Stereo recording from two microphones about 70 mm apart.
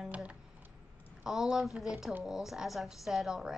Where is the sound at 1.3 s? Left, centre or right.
Centre.